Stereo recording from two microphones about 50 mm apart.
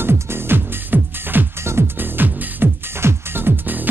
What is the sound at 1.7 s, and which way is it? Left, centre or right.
Music, right.